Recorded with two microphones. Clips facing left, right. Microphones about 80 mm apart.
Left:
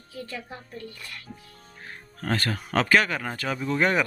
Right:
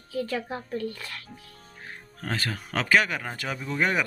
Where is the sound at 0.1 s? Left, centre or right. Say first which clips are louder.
Right 8 dB; right.